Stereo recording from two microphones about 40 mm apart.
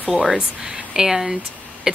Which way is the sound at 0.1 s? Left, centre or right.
Right.